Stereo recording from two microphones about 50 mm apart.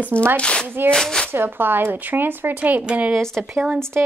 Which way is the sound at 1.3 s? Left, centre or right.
Right.